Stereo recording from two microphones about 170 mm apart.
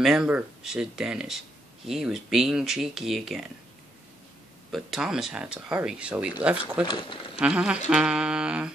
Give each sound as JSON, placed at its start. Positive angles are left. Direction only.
{"t": 0.0, "sound": "speech", "side_deg": -5}
{"t": 4.6, "sound": "speech", "side_deg": 0}
{"t": 6.9, "sound": "speech", "side_deg": 30}
{"t": 7.3, "sound": "speech", "side_deg": -5}